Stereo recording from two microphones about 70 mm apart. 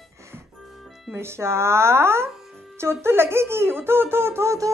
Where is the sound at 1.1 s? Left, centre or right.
Right.